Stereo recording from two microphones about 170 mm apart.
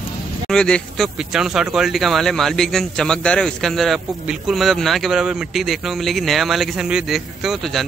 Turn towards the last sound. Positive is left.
turn(degrees=0)  # may be behind; listen again after turning